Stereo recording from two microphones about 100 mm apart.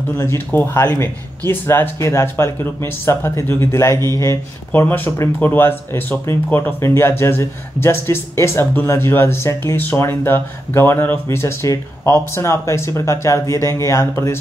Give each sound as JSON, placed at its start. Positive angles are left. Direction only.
{"t": 0.2, "sound": "speech", "side_deg": 20}